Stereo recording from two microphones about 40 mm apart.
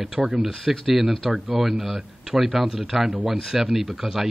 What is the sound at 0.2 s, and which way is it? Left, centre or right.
Speech, centre.